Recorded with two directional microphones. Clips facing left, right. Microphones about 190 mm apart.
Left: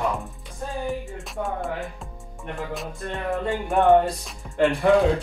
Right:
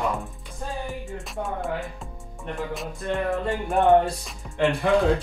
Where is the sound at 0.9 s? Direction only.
Centre (ahead or behind).